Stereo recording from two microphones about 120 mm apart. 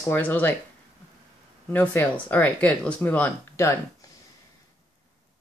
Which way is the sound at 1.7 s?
15° left (ahead or behind).